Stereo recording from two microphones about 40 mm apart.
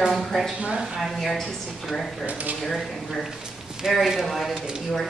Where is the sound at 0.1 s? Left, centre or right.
Centre.